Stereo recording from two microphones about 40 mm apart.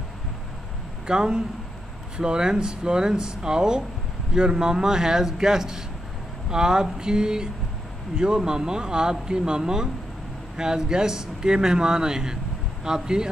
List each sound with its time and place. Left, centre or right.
1.0 s speech: right